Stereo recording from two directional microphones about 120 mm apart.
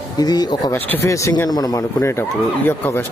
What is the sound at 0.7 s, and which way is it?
Speech, 15° left (ahead or behind).